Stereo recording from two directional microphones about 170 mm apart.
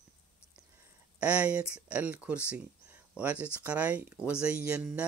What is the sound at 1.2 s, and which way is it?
Speech, 5° right (ahead or behind).